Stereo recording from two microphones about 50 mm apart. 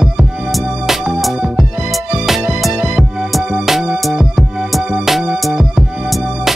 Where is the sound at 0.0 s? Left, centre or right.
Centre.